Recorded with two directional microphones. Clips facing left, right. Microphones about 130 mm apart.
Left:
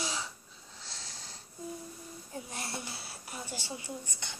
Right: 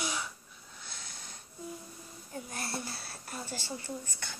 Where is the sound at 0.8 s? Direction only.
30° left (ahead or behind).